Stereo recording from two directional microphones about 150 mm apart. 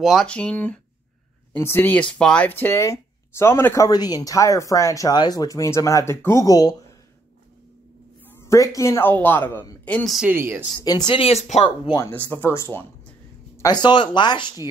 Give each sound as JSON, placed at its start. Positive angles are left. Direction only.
{"t": 0.0, "sound": "speech", "side_deg": 0}
{"t": 8.3, "sound": "speech", "side_deg": 20}
{"t": 10.2, "sound": "speech", "side_deg": -15}
{"t": 11.1, "sound": "speech", "side_deg": 40}
{"t": 12.0, "sound": "speech", "side_deg": 15}
{"t": 13.6, "sound": "speech", "side_deg": 30}